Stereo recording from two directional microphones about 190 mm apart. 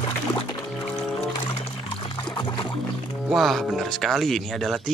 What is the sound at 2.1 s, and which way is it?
Music, 25° left (ahead or behind).